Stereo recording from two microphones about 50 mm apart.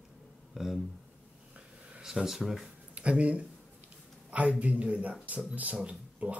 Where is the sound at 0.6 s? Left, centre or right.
Centre.